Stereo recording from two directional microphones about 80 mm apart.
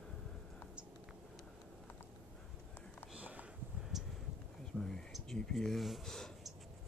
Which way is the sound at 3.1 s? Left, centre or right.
Centre.